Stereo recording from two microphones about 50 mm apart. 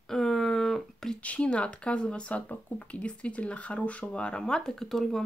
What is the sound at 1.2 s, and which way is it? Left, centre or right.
Speech, left.